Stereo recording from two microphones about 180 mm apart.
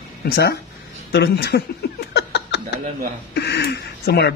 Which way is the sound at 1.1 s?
65° left (ahead or behind).